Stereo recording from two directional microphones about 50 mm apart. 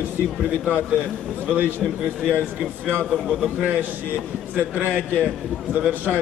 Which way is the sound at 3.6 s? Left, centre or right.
Right.